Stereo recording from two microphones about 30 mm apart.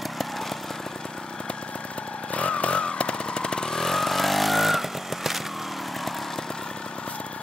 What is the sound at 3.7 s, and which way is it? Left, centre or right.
Vehicle, centre.